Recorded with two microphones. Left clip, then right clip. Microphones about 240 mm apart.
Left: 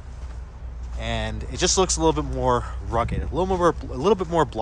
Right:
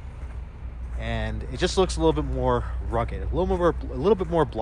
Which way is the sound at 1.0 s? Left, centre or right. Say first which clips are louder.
Left 3 dB; centre.